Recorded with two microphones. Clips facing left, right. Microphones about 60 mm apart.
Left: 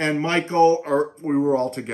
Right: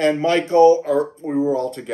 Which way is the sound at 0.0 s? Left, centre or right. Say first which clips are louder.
Right 4 dB; left.